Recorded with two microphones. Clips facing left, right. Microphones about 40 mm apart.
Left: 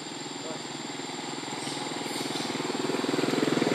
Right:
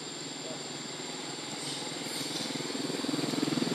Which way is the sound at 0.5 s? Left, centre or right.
Left.